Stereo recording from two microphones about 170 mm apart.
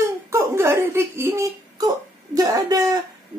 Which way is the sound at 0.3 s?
15° right (ahead or behind).